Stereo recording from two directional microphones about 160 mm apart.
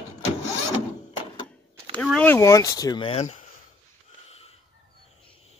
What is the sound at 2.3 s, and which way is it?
Speech, 20° left (ahead or behind).